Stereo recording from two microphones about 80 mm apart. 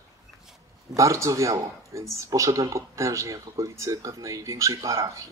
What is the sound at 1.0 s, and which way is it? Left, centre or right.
Speech, right.